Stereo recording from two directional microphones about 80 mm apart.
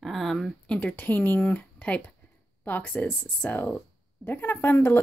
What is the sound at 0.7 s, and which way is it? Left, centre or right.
Speech, centre.